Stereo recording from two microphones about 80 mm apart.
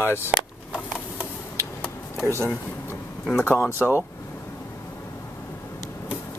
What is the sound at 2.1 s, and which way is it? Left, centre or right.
Speech, left.